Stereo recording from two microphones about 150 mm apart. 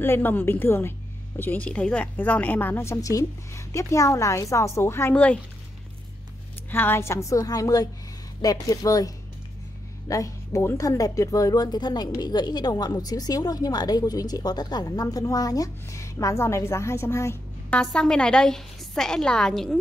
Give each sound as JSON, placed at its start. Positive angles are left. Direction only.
{"t": 0.0, "sound": "a woman's voice", "side_deg": 15}
{"t": 6.7, "sound": "speech", "side_deg": 15}
{"t": 17.6, "sound": "a woman's voice", "side_deg": 5}